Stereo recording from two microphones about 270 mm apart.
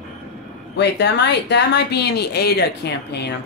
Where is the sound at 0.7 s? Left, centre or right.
Left.